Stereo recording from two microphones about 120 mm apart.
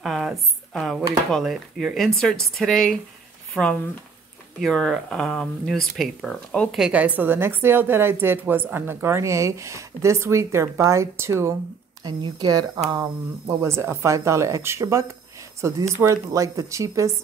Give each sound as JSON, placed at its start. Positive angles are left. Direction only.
{"t": 0.0, "sound": "a sound", "side_deg": 0}
{"t": 1.3, "sound": "speech", "side_deg": 0}
{"t": 6.8, "sound": "a woman's voice", "side_deg": -10}
{"t": 12.0, "sound": "speech", "side_deg": -35}
{"t": 13.6, "sound": "a woman's voice", "side_deg": -20}